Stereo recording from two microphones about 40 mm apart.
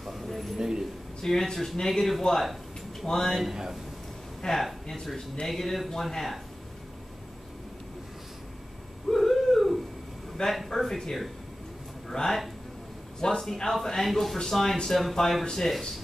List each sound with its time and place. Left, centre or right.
0.0 s a sound: centre
0.6 s a sound: centre
1.2 s speech: centre
3.4 s speech: centre
4.4 s speech: centre
9.1 s a sound: centre
10.4 s speech: left
10.8 s speech: centre
13.4 s speech: centre